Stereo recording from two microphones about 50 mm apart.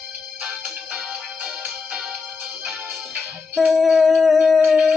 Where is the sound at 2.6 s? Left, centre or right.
Centre.